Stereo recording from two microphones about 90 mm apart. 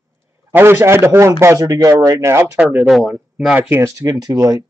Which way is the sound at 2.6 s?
10° right (ahead or behind).